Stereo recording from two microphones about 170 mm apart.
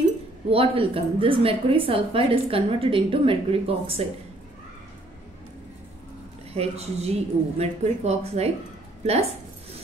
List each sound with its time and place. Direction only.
0.5 s a woman's voice: 35° right (ahead or behind)
6.5 s a woman's voice: 35° right (ahead or behind)